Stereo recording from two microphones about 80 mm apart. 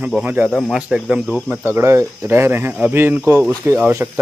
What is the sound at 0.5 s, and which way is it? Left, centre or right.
Speech, centre.